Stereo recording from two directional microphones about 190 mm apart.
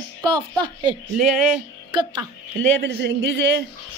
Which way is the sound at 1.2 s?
Centre (ahead or behind).